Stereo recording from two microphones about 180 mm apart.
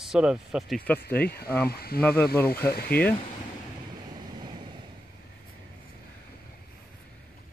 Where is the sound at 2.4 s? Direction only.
60° left (ahead or behind).